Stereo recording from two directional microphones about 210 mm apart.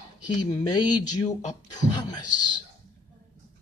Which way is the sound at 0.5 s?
20° left (ahead or behind).